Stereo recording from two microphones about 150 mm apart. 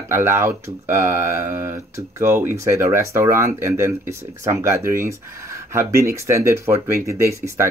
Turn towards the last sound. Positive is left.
turn(degrees=-20)  # may be behind; listen again after turning